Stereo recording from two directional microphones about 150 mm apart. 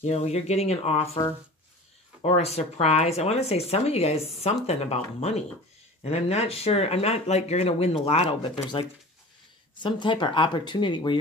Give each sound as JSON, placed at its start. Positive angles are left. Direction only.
{"t": 0.0, "sound": "speech", "side_deg": 45}
{"t": 2.2, "sound": "speech", "side_deg": 45}